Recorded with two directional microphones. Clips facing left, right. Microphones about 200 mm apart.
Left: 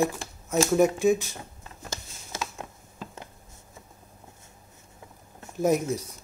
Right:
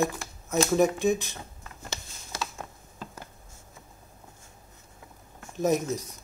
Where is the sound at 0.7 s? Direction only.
10° left (ahead or behind).